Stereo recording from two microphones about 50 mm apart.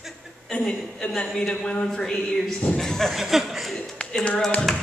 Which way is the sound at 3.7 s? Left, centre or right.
Left.